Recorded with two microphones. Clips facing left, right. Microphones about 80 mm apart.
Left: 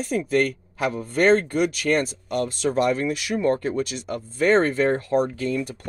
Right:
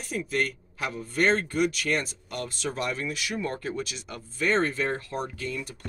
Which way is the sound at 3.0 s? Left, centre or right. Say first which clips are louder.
Left 8 dB; left.